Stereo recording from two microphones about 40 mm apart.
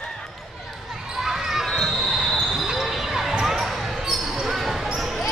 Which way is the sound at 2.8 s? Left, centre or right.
Centre.